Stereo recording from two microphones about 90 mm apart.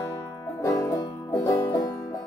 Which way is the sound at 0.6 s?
40° left (ahead or behind).